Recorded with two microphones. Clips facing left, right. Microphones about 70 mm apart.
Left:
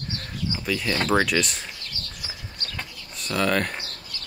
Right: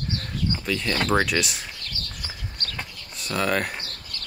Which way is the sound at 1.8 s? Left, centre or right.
Right.